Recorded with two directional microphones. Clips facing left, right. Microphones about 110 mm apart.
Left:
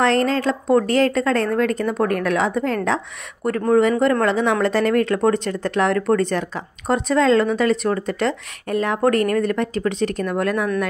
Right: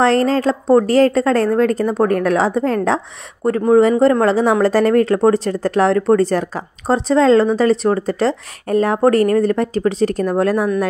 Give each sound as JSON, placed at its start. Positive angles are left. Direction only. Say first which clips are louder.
{"t": 0.0, "sound": "speech", "louder": "right 4 dB", "side_deg": -35}